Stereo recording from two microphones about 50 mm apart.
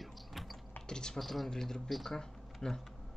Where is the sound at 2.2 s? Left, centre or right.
Centre.